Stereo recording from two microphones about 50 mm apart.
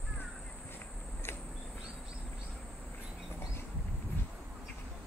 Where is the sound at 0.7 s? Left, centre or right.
Left.